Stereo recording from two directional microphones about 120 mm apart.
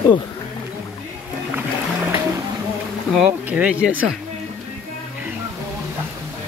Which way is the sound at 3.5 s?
10° right (ahead or behind).